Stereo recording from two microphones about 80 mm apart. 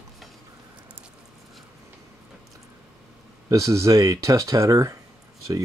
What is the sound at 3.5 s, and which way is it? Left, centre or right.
Speech, right.